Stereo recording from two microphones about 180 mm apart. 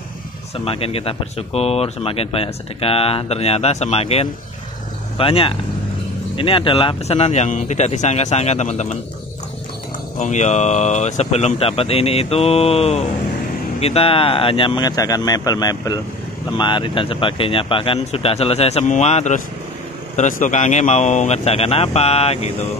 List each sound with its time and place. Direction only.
0.7 s speech: 30° left (ahead or behind)
10.1 s speech: 40° left (ahead or behind)